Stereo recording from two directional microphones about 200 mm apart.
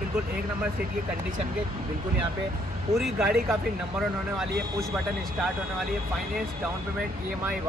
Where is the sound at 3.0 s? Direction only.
Centre (ahead or behind).